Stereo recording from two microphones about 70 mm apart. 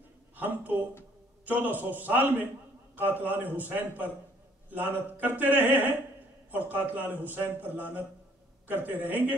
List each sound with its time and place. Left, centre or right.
0.4 s speech: right